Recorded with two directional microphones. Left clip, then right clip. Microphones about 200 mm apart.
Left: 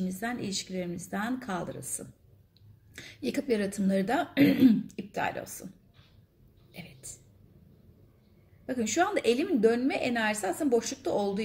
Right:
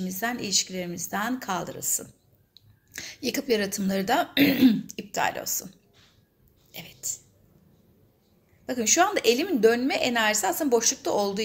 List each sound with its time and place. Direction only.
0.0 s a woman's voice: 10° left (ahead or behind)
6.7 s a sound: 5° left (ahead or behind)
8.6 s a woman's voice: 10° left (ahead or behind)